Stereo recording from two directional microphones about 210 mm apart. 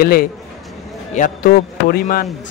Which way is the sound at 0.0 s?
45° left (ahead or behind).